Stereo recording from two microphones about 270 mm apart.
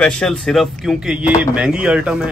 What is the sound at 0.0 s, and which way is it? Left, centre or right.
Speech, centre.